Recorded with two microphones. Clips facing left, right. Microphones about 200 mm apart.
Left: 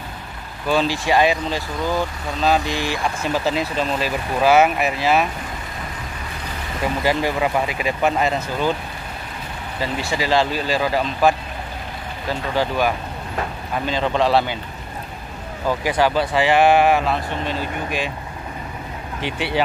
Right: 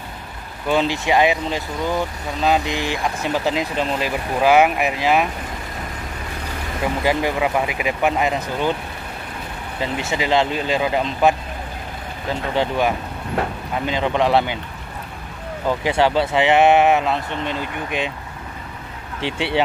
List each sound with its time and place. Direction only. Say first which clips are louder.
0.7 s speech: even; 20° right (ahead or behind)
7.0 s speech: even; 15° right (ahead or behind)
9.8 s speech: even; 20° right (ahead or behind)
15.8 s speech: right 1 dB; 25° right (ahead or behind)
19.2 s speech: right 2 dB; 25° right (ahead or behind)